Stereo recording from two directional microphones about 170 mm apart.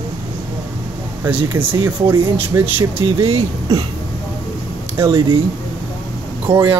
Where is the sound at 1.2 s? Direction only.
10° right (ahead or behind).